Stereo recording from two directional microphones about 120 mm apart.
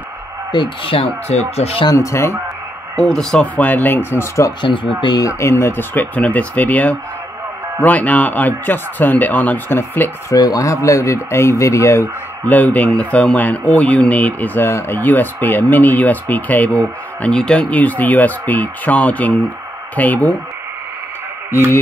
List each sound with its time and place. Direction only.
0.5 s speech: 45° left (ahead or behind)
1.9 s speech: 25° left (ahead or behind)
3.0 s speech: 5° left (ahead or behind); by 4.6 s 25° left (ahead or behind)
4.6 s speech: 40° left (ahead or behind); by 10.1 s 20° left (ahead or behind)
10.3 s speech: 30° left (ahead or behind); by 20.3 s 15° left (ahead or behind)